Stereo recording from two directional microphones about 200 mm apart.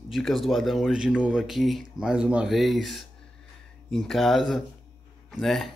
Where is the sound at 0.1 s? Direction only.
Centre (ahead or behind).